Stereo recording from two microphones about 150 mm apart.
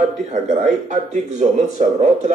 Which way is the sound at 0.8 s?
55° right (ahead or behind).